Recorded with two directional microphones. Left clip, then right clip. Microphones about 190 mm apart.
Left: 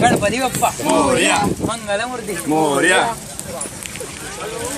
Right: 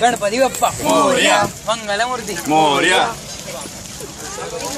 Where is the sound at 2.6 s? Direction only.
35° left (ahead or behind).